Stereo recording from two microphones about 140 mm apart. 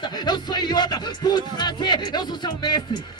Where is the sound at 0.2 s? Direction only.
30° left (ahead or behind).